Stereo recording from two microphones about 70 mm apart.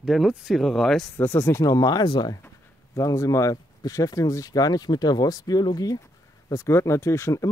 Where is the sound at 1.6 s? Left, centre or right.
Left.